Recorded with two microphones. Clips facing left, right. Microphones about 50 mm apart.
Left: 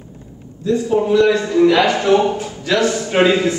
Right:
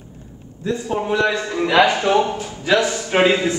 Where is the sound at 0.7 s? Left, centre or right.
Right.